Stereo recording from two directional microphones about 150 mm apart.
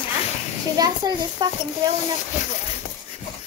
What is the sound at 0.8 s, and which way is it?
Speech, 25° right (ahead or behind).